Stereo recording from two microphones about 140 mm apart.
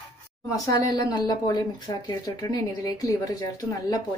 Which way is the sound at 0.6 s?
25° left (ahead or behind).